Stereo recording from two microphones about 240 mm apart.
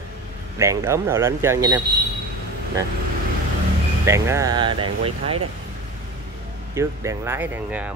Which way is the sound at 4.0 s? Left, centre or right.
Centre.